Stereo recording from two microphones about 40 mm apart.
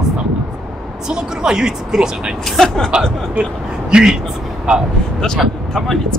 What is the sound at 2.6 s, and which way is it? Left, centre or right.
Speech, centre.